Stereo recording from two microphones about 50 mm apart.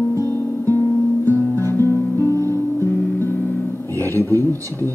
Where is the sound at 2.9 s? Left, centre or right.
Left.